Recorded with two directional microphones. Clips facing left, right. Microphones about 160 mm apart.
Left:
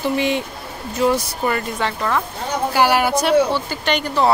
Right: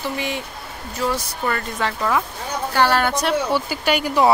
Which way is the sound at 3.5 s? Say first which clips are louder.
Right 1 dB; 10° right (ahead or behind).